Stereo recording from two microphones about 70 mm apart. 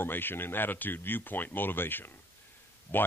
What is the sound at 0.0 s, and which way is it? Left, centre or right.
Speech, left.